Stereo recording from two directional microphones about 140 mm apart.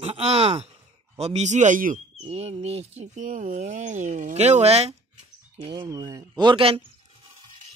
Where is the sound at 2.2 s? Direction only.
45° right (ahead or behind).